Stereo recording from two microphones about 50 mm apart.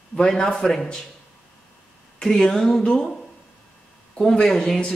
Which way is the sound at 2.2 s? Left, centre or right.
Centre.